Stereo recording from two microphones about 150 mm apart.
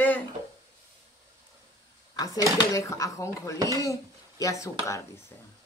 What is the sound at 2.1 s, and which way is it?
Speech, 25° left (ahead or behind).